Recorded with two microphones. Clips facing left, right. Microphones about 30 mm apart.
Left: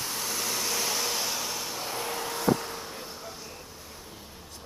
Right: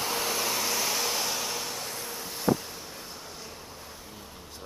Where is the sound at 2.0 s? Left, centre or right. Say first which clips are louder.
Left 6 dB; left.